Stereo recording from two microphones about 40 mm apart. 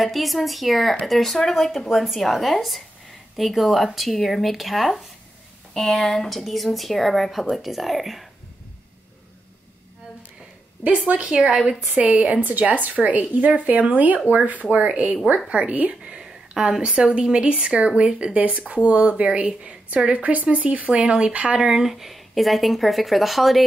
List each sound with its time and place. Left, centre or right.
0.0 s speech: centre
11.1 s speech: right
11.4 s speech: right
11.9 s speech: right
20.9 s speech: right
21.5 s speech: centre